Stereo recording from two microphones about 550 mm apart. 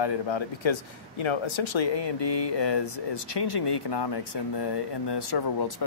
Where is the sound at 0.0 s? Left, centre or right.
Left.